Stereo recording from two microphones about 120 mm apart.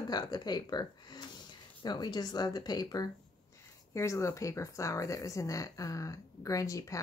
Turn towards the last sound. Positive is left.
turn(degrees=25)  # may be behind; listen again after turning